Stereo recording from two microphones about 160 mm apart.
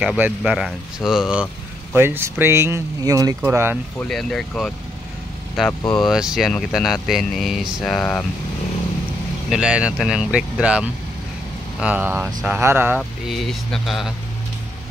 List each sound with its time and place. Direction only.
0.0 s speech: 5° right (ahead or behind)
2.0 s speech: 15° right (ahead or behind)
4.1 s speech: 5° left (ahead or behind)
6.0 s speech: 5° right (ahead or behind)
9.5 s speech: 5° right (ahead or behind)
13.3 s speech: centre (ahead or behind)